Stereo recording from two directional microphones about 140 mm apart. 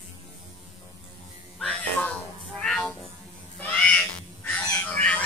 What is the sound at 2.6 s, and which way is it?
Cat, 5° left (ahead or behind).